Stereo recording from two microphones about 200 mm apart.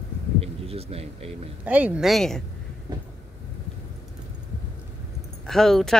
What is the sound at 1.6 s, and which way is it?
Speech, 5° right (ahead or behind).